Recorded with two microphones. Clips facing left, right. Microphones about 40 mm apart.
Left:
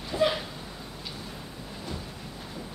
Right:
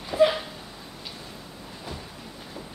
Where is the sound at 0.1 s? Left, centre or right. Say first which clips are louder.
Right 5 dB; centre.